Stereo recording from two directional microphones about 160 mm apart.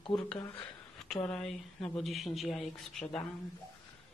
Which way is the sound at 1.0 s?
5° left (ahead or behind).